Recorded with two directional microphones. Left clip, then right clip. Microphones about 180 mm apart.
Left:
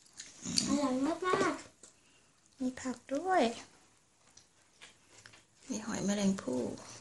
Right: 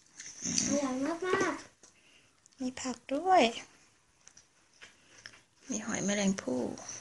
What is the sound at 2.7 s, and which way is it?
Speech, 10° right (ahead or behind).